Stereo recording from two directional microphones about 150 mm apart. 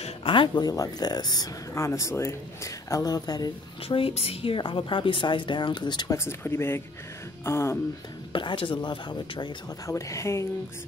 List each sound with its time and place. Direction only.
0.0 s speech: 35° left (ahead or behind); by 6.8 s 15° left (ahead or behind)
7.4 s music: 20° left (ahead or behind)
8.3 s speech: 35° left (ahead or behind)
9.8 s speech: 20° left (ahead or behind)